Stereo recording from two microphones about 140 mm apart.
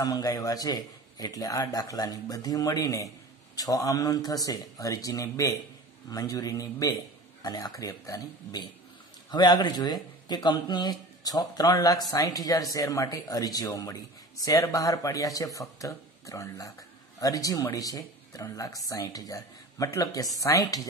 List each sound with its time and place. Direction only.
0.0 s speech: 25° left (ahead or behind)